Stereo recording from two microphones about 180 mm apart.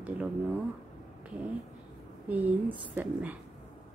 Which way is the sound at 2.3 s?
10° right (ahead or behind).